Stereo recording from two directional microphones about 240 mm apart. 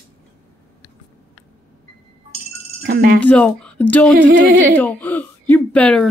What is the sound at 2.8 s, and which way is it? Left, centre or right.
Speech, right.